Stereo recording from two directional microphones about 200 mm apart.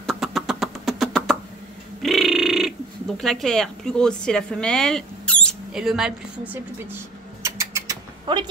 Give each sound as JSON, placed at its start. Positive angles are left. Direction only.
{"t": 0.0, "sound": "vehicle", "side_deg": 0}
{"t": 2.0, "sound": "a sound", "side_deg": 0}
{"t": 3.2, "sound": "a woman's voice", "side_deg": 0}
{"t": 7.4, "sound": "rodents", "side_deg": -15}